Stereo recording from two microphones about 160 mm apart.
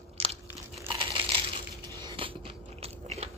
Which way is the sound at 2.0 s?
30° right (ahead or behind).